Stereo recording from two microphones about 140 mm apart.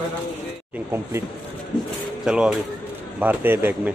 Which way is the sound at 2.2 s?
5° right (ahead or behind).